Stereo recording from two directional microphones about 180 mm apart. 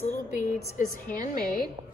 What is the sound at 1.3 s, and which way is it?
Speech, 55° left (ahead or behind).